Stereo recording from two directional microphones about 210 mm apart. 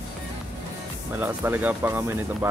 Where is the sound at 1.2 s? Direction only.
10° right (ahead or behind).